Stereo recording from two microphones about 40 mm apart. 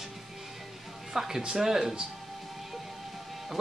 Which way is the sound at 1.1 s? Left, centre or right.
Centre.